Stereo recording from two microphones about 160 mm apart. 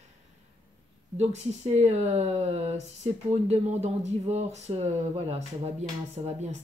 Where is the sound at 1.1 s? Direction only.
45° right (ahead or behind).